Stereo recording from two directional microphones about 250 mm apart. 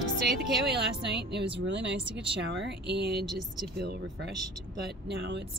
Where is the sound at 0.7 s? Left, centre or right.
Right.